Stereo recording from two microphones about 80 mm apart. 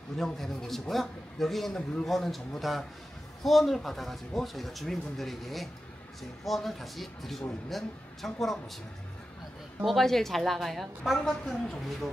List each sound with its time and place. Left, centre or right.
0.2 s speech: centre
9.8 s speech: centre